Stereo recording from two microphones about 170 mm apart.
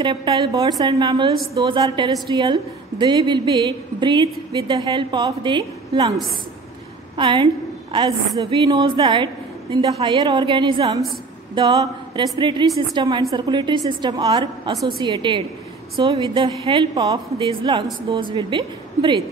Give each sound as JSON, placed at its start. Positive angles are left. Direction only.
{"t": 0.0, "sound": "a woman's voice", "side_deg": -30}